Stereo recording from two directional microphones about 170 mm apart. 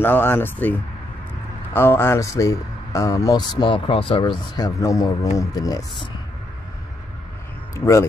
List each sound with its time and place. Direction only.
0.0 s speech: 10° left (ahead or behind)
7.7 s speech: 15° left (ahead or behind)